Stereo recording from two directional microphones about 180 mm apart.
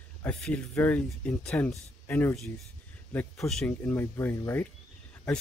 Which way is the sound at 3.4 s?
Centre (ahead or behind).